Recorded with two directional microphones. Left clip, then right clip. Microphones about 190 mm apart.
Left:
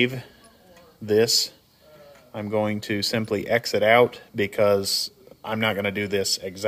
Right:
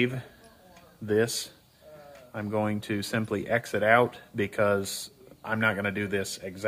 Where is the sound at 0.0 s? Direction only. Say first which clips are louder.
Left 5 dB; 20° left (ahead or behind).